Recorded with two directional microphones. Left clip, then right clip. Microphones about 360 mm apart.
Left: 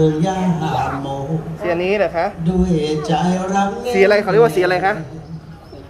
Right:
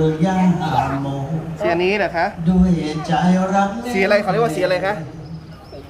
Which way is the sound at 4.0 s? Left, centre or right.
Centre.